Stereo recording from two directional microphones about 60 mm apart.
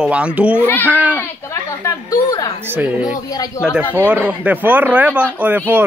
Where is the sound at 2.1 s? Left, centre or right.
Left.